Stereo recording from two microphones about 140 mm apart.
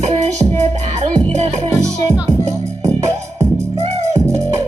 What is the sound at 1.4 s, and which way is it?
Music, 50° right (ahead or behind).